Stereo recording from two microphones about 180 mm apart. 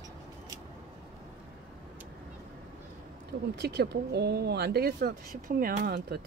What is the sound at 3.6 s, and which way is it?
Speech, 70° right (ahead or behind).